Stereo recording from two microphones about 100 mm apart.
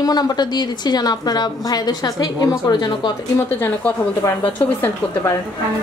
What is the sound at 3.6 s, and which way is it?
A woman's voice, 15° left (ahead or behind).